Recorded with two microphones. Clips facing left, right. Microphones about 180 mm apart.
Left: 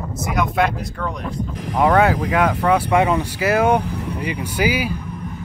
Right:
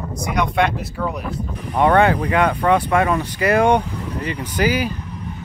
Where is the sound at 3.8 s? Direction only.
65° left (ahead or behind).